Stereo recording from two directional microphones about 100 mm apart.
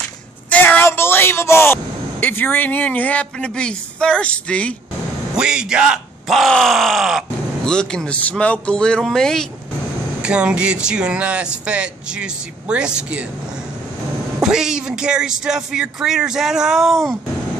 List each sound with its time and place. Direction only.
0.5 s speech: 20° left (ahead or behind)
5.3 s speech: 5° right (ahead or behind)
10.2 s speech: 10° right (ahead or behind)
14.4 s speech: 5° right (ahead or behind)